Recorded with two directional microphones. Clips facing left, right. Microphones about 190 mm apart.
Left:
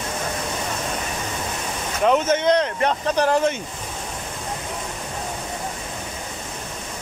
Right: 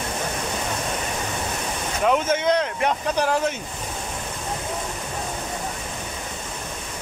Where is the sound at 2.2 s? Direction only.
10° right (ahead or behind).